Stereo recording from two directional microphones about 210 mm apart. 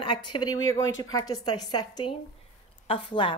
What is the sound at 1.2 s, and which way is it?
Speech, 20° left (ahead or behind).